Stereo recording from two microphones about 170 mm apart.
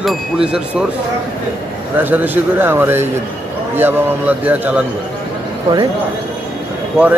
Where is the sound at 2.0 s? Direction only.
10° right (ahead or behind).